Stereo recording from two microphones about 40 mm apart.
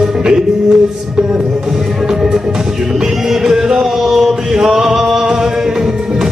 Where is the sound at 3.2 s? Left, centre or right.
Centre.